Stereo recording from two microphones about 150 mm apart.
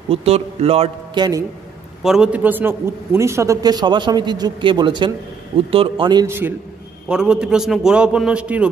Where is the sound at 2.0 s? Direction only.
5° right (ahead or behind); by 6.2 s 30° right (ahead or behind).